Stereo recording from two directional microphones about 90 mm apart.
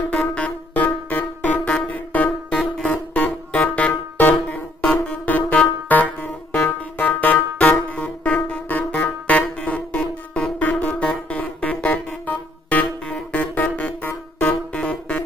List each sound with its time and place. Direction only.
0.1 s music: 15° left (ahead or behind)